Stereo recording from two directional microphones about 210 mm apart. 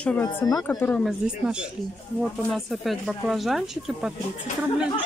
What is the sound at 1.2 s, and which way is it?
Speech, 5° right (ahead or behind).